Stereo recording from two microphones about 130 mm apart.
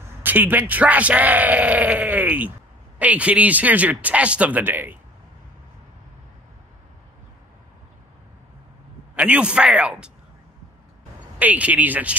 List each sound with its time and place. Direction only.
0.2 s speech: 15° right (ahead or behind)
9.1 s speech: 10° right (ahead or behind)
11.3 s speech: 10° right (ahead or behind)